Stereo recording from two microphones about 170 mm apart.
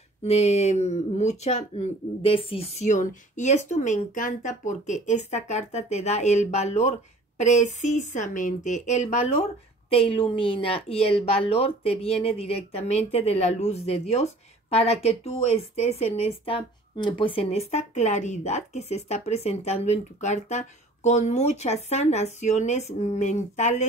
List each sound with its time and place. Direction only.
0.2 s speech: 40° left (ahead or behind)